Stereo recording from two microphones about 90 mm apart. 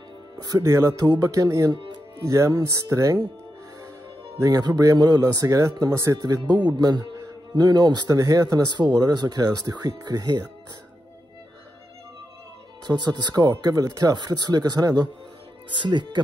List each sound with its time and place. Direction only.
0.4 s speech: 45° right (ahead or behind)
1.0 s speech: 50° right (ahead or behind)
2.2 s speech: 35° right (ahead or behind)
4.4 s speech: 45° right (ahead or behind)
6.1 s speech: 50° right (ahead or behind)
12.8 s speech: 50° right (ahead or behind)
15.7 s speech: 60° right (ahead or behind)